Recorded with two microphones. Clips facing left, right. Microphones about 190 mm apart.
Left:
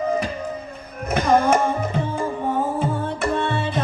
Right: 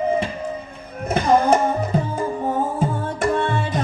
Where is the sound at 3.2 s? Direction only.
45° right (ahead or behind).